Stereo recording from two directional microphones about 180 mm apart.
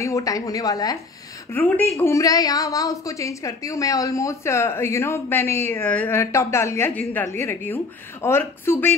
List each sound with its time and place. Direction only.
0.0 s a woman's voice: 20° left (ahead or behind)